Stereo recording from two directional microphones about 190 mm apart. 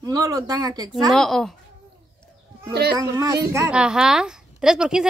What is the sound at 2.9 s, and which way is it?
Speech, 20° right (ahead or behind).